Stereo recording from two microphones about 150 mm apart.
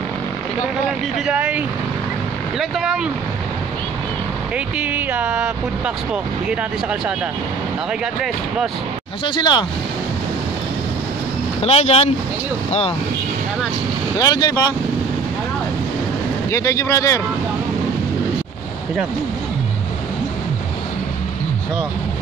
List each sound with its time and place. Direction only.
1.2 s speech: 10° right (ahead or behind)
2.6 s speech: 5° right (ahead or behind)
4.6 s speech: 10° right (ahead or behind)
9.2 s speech: 30° left (ahead or behind)
11.6 s speech: 40° left (ahead or behind)
14.1 s speech: 25° left (ahead or behind)
16.4 s speech: 20° left (ahead or behind)